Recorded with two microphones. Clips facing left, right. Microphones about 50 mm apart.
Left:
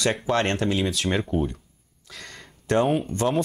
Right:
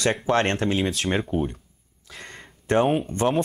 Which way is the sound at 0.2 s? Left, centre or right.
Right.